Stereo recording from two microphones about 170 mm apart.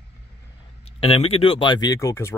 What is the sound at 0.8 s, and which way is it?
Speech, 35° left (ahead or behind).